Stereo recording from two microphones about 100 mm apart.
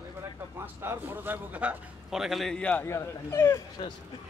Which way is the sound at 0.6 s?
20° right (ahead or behind).